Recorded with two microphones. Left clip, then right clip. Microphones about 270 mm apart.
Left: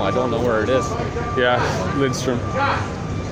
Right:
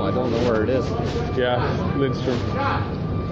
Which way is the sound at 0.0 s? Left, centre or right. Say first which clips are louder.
Left 2 dB; centre.